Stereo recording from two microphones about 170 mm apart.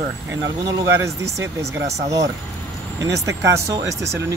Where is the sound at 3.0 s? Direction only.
20° right (ahead or behind).